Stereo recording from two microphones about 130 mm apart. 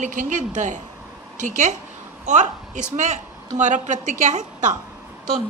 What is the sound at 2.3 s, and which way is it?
A woman's voice, 70° right (ahead or behind).